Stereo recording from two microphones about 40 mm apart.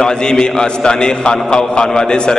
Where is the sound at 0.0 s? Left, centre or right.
Centre.